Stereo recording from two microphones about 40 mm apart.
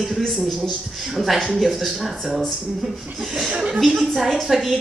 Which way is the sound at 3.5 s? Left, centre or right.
Right.